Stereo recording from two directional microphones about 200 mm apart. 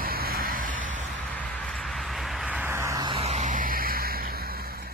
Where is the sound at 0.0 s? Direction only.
50° right (ahead or behind).